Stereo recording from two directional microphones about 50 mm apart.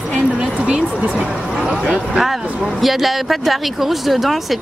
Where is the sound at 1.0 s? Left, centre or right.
Right.